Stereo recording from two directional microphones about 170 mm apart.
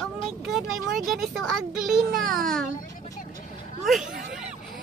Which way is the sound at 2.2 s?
55° right (ahead or behind).